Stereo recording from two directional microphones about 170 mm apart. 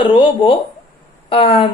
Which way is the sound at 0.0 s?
30° left (ahead or behind).